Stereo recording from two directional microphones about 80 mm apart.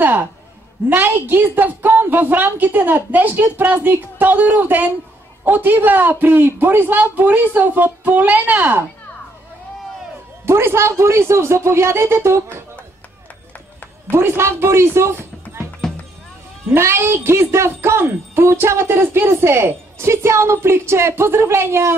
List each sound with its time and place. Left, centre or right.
0.0 s a man's voice: right
10.4 s speech: right
14.1 s speech: right
15.8 s music: centre
16.7 s speech: right